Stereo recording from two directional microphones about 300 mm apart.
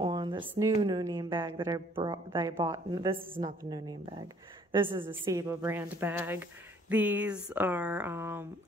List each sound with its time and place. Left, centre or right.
0.0 s a woman's voice: centre
3.2 s a woman's voice: right
3.4 s a woman's voice: centre